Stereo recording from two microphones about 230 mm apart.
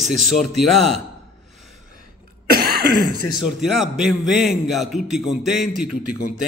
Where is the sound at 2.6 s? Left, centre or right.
Right.